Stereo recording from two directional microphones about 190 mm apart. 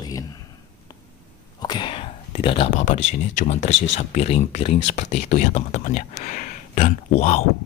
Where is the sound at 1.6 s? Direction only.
25° left (ahead or behind).